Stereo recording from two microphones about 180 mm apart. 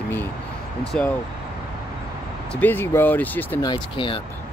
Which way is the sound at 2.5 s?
10° left (ahead or behind).